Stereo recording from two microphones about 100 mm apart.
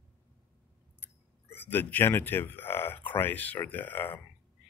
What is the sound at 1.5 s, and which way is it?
Speech, 20° left (ahead or behind).